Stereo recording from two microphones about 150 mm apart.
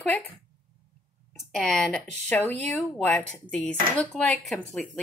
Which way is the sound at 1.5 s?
5° left (ahead or behind).